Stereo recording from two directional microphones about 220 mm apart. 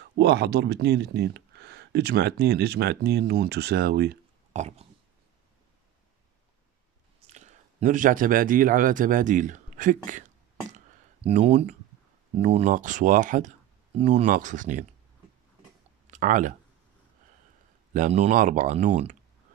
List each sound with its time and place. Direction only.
0.0 s speech: 50° right (ahead or behind)
4.5 s speech: 30° right (ahead or behind)
7.2 s a man's voice: 30° right (ahead or behind)
11.2 s speech: 30° right (ahead or behind)
16.1 s speech: 35° right (ahead or behind)
17.9 s speech: 35° right (ahead or behind)